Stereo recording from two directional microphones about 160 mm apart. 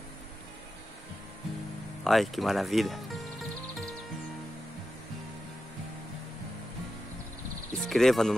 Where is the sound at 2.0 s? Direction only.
Centre (ahead or behind).